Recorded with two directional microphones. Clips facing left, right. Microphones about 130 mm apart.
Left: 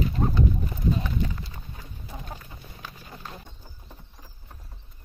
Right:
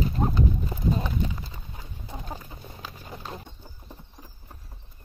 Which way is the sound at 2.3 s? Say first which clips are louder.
Right 3 dB; 20° right (ahead or behind).